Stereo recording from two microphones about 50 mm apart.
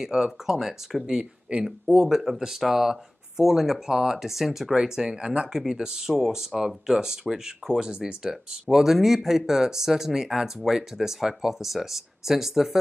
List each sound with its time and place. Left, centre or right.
0.0 s speech: centre
1.1 s speech: centre